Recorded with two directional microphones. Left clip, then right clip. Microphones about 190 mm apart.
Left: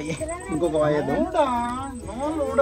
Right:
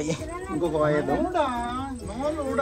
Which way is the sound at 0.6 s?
20° left (ahead or behind).